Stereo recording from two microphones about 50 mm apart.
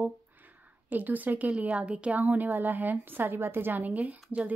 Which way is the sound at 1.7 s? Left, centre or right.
Right.